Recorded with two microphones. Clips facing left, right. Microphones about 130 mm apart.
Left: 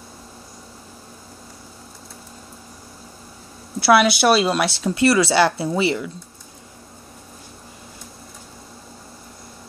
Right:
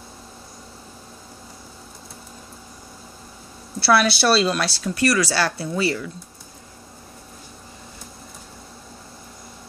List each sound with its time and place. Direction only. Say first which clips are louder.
3.8 s speech: left 3 dB; 15° left (ahead or behind)